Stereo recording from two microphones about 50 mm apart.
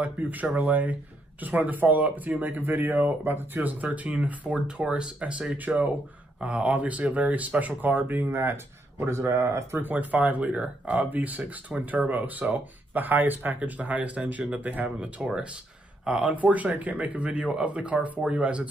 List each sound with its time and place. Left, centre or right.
0.0 s speech: right
4.6 s speech: centre
5.7 s speech: right
9.8 s speech: right
16.0 s speech: right